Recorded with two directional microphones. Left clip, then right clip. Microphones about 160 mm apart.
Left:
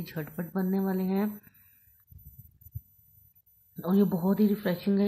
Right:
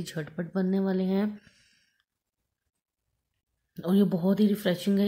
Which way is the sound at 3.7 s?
20° right (ahead or behind).